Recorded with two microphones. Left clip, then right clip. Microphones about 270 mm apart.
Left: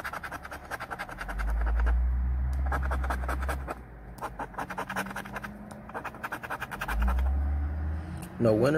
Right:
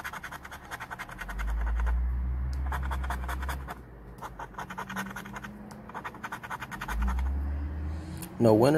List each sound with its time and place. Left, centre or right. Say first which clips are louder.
0.1 s a sound: left 3 dB; centre
2.7 s scratch: left 3 dB; centre
8.4 s speech: right 3 dB; centre